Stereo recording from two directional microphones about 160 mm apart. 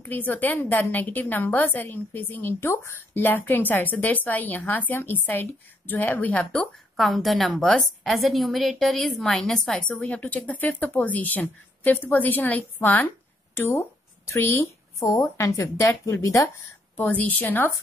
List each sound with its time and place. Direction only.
0.0 s a woman's voice: 10° left (ahead or behind)